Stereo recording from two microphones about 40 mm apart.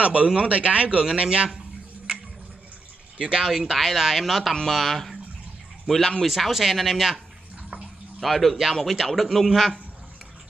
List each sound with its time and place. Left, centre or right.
0.0 s a man's voice: right
3.2 s a man's voice: centre
3.5 s a man's voice: centre
8.2 s a man's voice: centre